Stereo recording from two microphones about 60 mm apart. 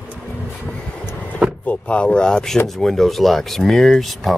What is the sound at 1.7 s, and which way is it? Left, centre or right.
Speech, left.